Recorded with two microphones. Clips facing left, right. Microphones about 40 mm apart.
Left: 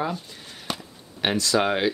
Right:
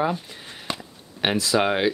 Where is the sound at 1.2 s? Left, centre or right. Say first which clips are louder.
Right 1 dB; centre.